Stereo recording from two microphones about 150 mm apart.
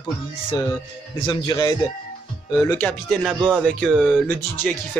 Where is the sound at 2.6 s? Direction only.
10° left (ahead or behind).